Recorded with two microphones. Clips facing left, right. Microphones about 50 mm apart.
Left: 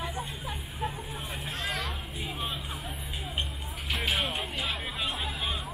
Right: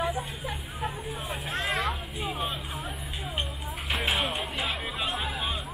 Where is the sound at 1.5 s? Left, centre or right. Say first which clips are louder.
Right 5 dB; right.